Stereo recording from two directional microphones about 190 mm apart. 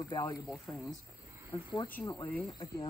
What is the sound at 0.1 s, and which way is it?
Speech, 15° left (ahead or behind).